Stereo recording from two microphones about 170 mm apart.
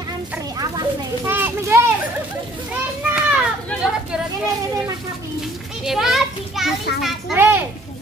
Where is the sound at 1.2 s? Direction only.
10° right (ahead or behind).